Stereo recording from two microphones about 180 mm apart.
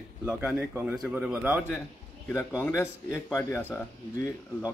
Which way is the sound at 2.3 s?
15° left (ahead or behind).